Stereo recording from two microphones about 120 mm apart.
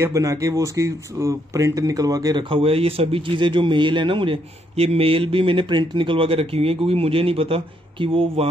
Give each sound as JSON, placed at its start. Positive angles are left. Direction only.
{"t": 0.0, "sound": "speech", "side_deg": -25}
{"t": 2.4, "sound": "speech", "side_deg": -50}